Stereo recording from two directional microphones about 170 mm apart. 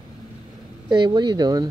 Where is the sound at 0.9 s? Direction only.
25° right (ahead or behind).